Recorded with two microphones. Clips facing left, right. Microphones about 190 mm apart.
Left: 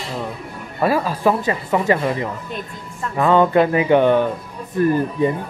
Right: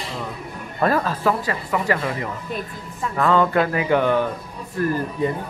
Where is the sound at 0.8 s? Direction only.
10° left (ahead or behind).